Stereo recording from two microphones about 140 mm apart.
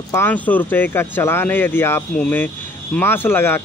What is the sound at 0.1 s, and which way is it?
Speech, 15° left (ahead or behind).